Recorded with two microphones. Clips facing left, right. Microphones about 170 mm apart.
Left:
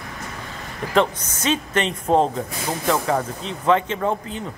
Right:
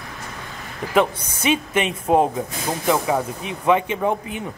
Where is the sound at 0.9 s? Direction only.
10° right (ahead or behind).